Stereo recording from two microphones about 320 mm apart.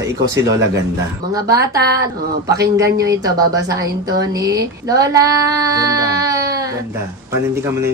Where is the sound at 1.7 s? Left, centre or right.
Right.